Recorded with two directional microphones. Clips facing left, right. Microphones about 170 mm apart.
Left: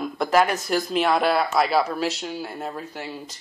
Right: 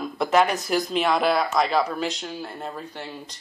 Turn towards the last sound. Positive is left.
turn(degrees=5)  # may be behind; listen again after turning